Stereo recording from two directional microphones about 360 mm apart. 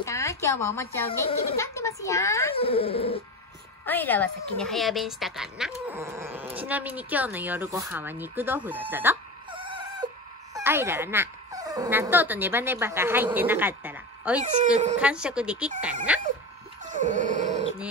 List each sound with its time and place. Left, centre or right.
0.0 s a woman's voice: centre
14.4 s speech: centre
15.0 s a woman's voice: centre
16.1 s a sound: centre
16.8 s dog: right